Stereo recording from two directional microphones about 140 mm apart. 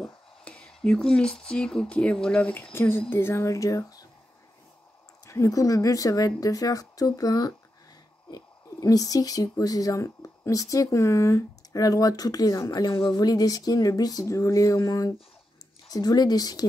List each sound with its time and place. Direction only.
0.0 s a sound: 5° left (ahead or behind)
1.4 s speech: 5° left (ahead or behind); by 4.0 s 25° left (ahead or behind)
5.2 s speech: 25° left (ahead or behind)